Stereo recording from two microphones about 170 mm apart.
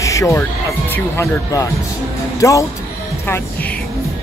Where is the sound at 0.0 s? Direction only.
20° left (ahead or behind).